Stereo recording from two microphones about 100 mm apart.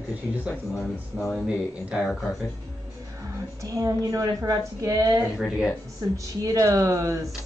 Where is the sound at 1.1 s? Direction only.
Centre (ahead or behind).